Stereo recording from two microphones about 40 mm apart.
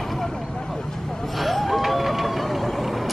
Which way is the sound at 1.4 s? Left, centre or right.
Centre.